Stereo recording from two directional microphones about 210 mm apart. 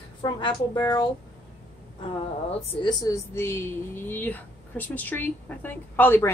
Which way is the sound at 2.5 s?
20° left (ahead or behind).